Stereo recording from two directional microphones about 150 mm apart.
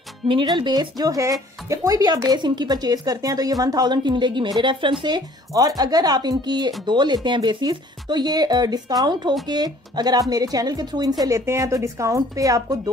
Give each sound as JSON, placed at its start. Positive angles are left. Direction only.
{"t": 0.3, "sound": "speech", "side_deg": -35}